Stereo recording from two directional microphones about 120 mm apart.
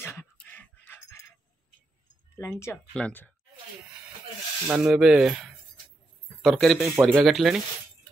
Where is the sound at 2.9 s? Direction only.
10° left (ahead or behind).